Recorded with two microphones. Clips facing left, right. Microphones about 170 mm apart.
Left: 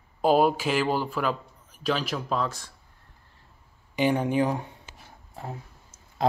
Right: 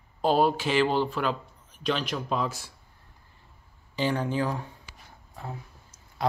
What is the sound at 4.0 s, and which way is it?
Speech, 15° left (ahead or behind).